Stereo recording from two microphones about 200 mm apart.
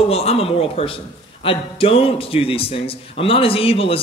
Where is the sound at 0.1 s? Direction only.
30° left (ahead or behind).